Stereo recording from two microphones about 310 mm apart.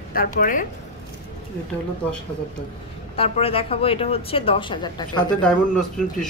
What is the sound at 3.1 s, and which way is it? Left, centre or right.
A woman's voice, centre.